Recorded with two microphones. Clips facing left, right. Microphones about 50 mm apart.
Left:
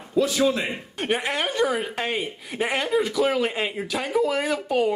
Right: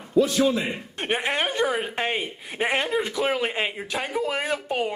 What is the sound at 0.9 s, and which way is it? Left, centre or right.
Speech, centre.